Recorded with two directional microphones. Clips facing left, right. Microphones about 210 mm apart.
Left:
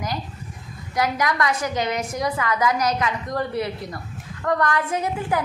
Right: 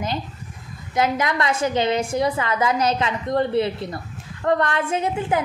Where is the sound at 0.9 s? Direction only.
25° right (ahead or behind).